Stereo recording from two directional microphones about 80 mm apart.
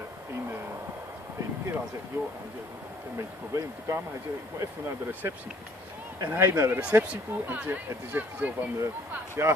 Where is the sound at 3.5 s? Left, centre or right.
Right.